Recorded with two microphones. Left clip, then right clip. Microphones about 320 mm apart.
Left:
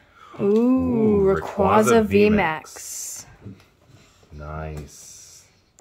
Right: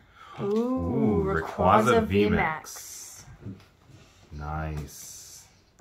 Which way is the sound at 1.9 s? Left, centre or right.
Left.